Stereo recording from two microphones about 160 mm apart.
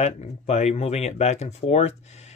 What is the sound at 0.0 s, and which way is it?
Speech, 45° left (ahead or behind).